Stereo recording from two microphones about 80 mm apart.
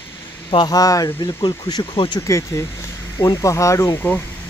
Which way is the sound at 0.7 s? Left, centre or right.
Left.